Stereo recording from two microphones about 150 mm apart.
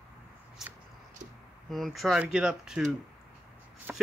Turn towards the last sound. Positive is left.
turn(degrees=-10)  # may be behind; listen again after turning